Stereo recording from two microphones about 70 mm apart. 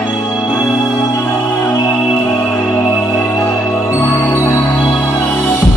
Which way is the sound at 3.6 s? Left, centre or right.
Left.